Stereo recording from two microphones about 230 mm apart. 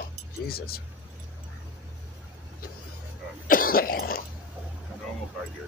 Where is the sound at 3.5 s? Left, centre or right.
Left.